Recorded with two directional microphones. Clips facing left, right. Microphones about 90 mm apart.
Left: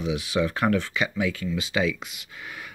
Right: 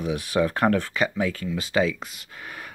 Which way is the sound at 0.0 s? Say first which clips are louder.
Right 2 dB; 50° right (ahead or behind).